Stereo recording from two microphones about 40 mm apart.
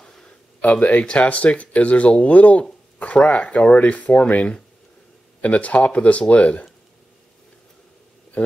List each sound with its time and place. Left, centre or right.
0.6 s speech: left
8.4 s speech: left